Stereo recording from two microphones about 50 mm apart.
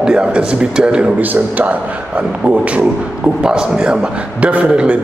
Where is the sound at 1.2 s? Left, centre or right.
Right.